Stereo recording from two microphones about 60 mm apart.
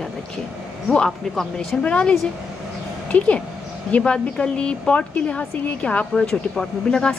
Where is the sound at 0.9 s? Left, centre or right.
Centre.